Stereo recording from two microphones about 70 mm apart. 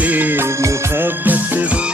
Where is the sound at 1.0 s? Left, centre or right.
Right.